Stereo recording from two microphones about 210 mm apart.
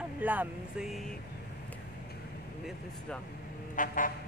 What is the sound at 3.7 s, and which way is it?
Vehicle, 40° left (ahead or behind).